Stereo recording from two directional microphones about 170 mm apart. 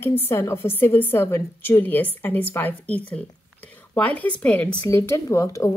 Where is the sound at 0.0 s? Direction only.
15° left (ahead or behind).